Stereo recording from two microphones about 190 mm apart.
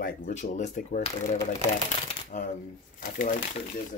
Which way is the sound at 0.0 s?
40° left (ahead or behind).